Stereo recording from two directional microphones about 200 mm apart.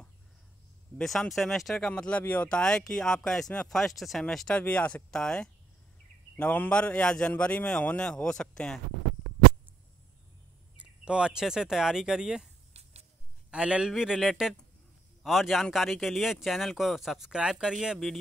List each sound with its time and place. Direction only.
0.9 s speech: 5° left (ahead or behind)
10.8 s speech: 5° right (ahead or behind)
12.7 s a sound: 30° right (ahead or behind)
13.5 s speech: 5° right (ahead or behind)